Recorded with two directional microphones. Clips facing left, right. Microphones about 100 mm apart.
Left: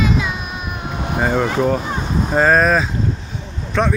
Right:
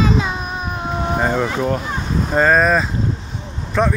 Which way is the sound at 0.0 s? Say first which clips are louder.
Right 1 dB; 30° right (ahead or behind).